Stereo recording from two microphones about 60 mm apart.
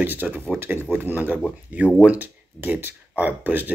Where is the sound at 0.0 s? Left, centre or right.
Right.